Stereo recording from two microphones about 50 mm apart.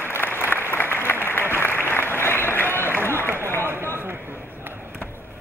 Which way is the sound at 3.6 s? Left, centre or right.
Right.